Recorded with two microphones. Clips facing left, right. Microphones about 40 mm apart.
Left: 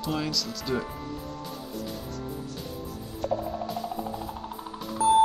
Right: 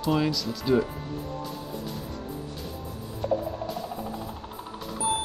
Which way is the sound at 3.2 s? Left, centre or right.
Centre.